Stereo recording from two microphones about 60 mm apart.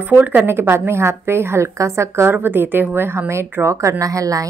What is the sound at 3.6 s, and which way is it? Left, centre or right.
Speech, right.